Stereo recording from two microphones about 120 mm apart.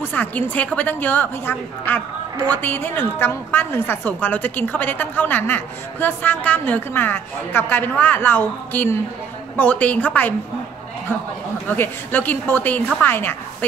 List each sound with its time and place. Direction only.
0.0 s a woman's voice: 15° left (ahead or behind)
11.7 s a woman's voice: 15° left (ahead or behind)